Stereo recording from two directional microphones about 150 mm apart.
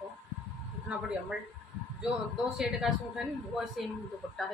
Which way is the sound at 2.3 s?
5° right (ahead or behind).